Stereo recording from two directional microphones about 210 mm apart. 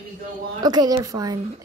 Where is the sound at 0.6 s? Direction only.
20° right (ahead or behind).